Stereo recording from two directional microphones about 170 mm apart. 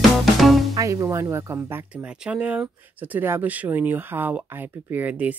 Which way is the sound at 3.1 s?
10° right (ahead or behind).